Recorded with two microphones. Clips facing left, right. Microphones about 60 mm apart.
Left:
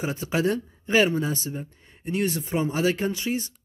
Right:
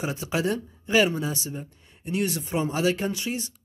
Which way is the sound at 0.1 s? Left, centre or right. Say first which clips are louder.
Left 4 dB; left.